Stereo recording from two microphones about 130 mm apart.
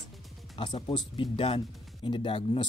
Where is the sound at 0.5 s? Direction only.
45° left (ahead or behind).